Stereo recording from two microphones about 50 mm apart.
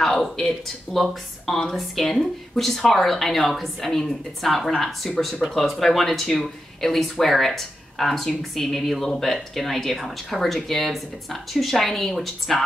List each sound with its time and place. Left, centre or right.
0.0 s speech: centre